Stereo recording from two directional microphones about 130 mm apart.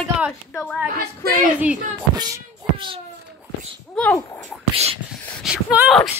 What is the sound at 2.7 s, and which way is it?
Speech, 40° right (ahead or behind).